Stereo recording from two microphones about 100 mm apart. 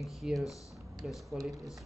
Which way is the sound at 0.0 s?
Centre (ahead or behind).